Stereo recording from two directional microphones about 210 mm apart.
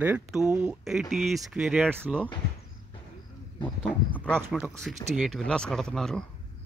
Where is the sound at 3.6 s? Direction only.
20° left (ahead or behind).